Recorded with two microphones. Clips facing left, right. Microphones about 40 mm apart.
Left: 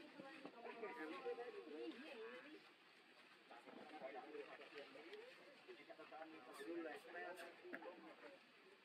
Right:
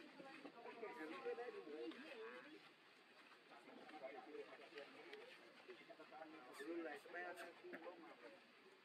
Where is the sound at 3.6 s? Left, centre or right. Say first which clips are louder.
Left 1 dB; centre.